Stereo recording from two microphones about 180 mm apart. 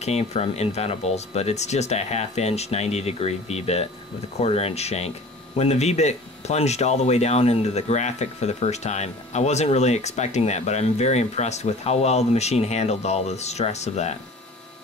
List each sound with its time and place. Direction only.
0.0 s speech: 35° left (ahead or behind)